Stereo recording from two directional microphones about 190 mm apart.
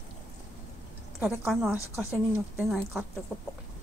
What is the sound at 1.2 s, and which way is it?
A woman's voice, centre (ahead or behind).